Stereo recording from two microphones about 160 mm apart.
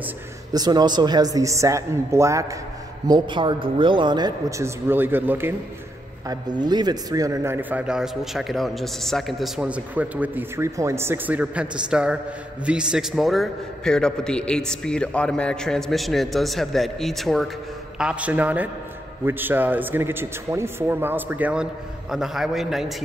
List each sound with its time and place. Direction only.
0.5 s a man's voice: 25° right (ahead or behind)
3.1 s a man's voice: 30° right (ahead or behind); by 5.5 s 10° right (ahead or behind)
6.2 s a man's voice: 25° right (ahead or behind); by 22.9 s centre (ahead or behind)